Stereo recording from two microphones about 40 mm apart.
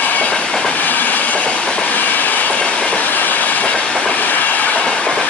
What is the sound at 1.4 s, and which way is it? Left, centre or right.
Train, left.